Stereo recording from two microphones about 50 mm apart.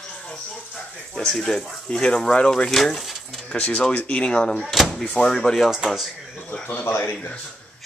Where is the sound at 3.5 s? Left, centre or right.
Left.